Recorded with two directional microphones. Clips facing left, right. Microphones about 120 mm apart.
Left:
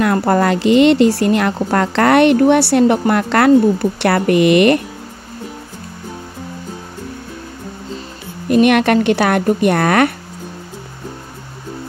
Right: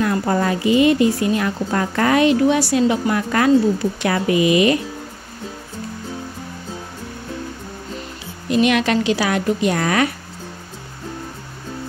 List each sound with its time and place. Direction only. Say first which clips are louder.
0.0 s a woman's voice: left 5 dB; 65° left (ahead or behind)
8.5 s a woman's voice: left 5 dB; 55° left (ahead or behind)